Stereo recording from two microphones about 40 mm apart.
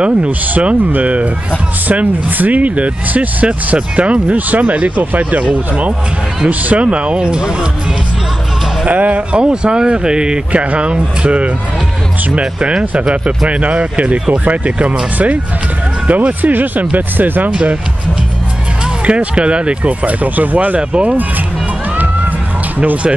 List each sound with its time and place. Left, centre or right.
0.0 s speech: right
1.9 s speech: right
8.8 s speech: right
16.1 s speech: right
17.5 s speech: right
19.0 s speech: right